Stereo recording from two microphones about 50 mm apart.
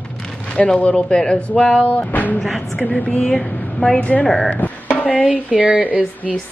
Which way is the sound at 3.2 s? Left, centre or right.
Centre.